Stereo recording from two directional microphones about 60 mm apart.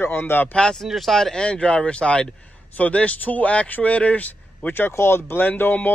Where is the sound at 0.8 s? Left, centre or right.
Centre.